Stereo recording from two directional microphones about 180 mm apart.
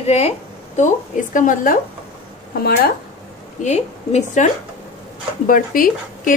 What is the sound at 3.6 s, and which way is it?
Speech, 40° left (ahead or behind).